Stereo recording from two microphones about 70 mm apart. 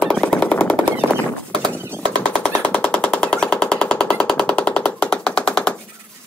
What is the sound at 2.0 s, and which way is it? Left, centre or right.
Machine gun, centre.